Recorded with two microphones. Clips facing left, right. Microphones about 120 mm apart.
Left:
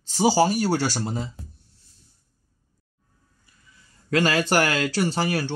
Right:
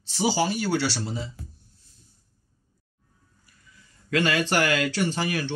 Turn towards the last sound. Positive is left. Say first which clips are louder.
# left 2 dB
turn(degrees=35)  # may be behind; listen again after turning